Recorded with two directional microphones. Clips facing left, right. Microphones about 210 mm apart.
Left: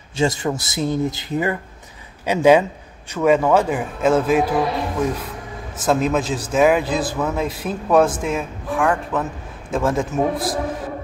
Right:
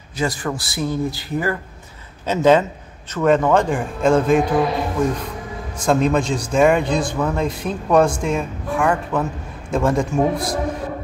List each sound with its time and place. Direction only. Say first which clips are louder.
0.1 s a man's voice: left 3 dB; 25° left (ahead or behind); by 10.6 s centre (ahead or behind)